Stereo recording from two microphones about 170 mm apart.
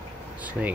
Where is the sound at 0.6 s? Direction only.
5° right (ahead or behind).